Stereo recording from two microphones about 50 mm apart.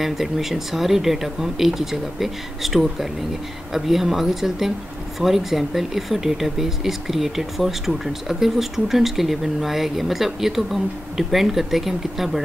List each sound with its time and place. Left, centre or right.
0.0 s speech: centre